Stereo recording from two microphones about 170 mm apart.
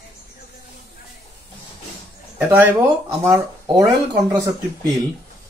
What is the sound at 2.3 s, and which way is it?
Speech, 10° right (ahead or behind).